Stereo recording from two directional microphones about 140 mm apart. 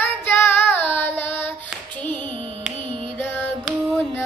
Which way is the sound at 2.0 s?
10° left (ahead or behind).